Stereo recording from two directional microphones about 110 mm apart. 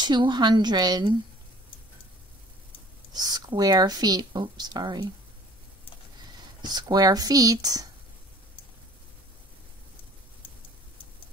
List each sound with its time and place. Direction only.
0.0 s speech: 40° right (ahead or behind)
3.1 s speech: 40° right (ahead or behind)
6.6 s speech: 40° right (ahead or behind)